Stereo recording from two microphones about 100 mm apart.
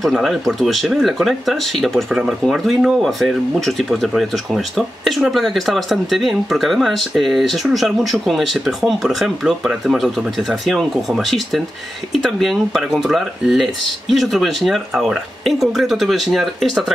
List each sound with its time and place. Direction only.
0.0 s speech: 5° right (ahead or behind)